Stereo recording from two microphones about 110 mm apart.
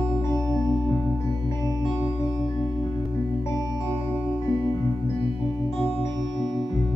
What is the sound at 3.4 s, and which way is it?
Music, 25° left (ahead or behind).